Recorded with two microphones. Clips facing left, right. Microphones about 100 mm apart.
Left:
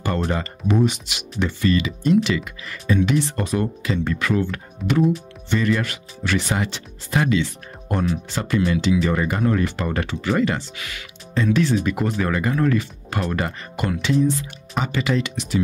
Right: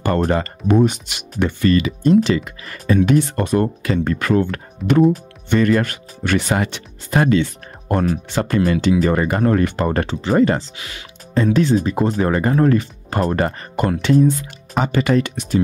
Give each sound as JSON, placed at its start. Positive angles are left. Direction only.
{"t": 0.0, "sound": "speech", "side_deg": -50}
{"t": 10.8, "sound": "speech", "side_deg": -30}
{"t": 11.3, "sound": "speech", "side_deg": -40}